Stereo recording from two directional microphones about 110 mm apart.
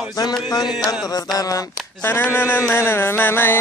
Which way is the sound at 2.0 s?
20° left (ahead or behind).